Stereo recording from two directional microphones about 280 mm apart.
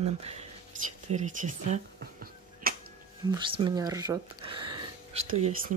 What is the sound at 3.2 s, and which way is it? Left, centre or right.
Speech, centre.